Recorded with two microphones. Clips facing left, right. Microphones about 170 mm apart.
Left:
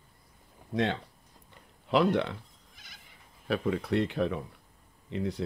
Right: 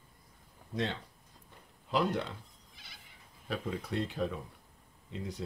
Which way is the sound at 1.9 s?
70° left (ahead or behind).